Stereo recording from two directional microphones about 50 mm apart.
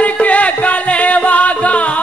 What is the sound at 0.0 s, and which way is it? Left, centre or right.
Music, left.